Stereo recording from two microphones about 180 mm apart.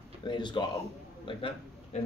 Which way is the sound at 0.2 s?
25° left (ahead or behind).